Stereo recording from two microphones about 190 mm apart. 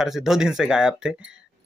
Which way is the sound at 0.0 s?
Centre (ahead or behind).